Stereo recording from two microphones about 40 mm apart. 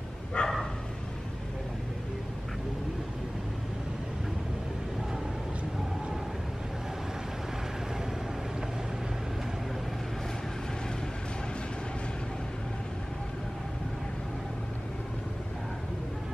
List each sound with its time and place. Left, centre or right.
0.4 s bow-wow: left